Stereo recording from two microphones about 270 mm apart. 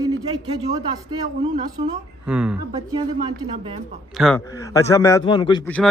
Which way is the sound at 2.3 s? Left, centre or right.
Centre.